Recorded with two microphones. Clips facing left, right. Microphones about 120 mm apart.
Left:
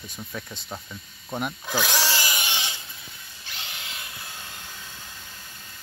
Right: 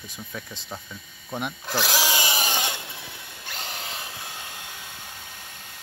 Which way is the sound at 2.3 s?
45° right (ahead or behind).